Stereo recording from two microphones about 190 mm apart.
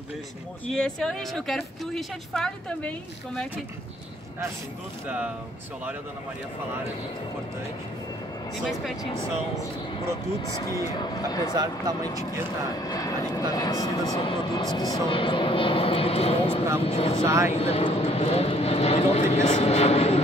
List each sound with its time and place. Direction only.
0.7 s speech: 5° left (ahead or behind)
10.5 s speech: 15° left (ahead or behind)
11.5 s speech: 20° right (ahead or behind)
12.7 s speech: 20° left (ahead or behind)
17.2 s speech: 15° right (ahead or behind)
17.6 s speech: 30° left (ahead or behind)